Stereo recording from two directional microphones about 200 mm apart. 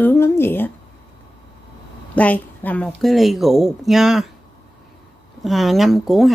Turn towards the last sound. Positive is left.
turn(degrees=0)  # may be behind; listen again after turning